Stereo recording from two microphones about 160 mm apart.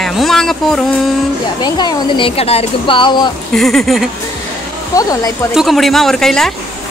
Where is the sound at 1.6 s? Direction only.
25° left (ahead or behind).